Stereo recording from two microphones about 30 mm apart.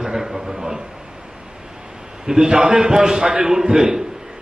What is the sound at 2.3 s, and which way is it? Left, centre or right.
A man's voice, right.